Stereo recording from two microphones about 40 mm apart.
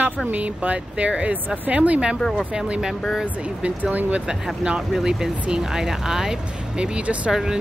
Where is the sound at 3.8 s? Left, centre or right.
Right.